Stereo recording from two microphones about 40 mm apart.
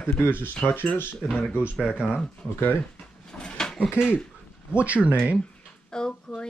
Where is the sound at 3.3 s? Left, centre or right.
Centre.